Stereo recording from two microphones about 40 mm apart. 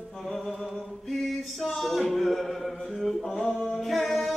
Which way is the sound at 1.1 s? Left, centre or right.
Centre.